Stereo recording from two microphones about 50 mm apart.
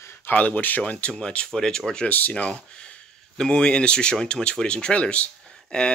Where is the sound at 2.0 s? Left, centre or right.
Left.